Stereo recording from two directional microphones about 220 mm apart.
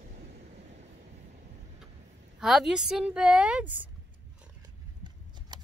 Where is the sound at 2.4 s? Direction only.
Centre (ahead or behind).